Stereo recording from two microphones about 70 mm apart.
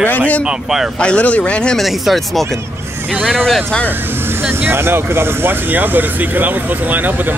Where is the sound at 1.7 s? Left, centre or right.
Centre.